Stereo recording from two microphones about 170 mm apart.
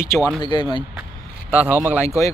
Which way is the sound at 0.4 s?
30° left (ahead or behind).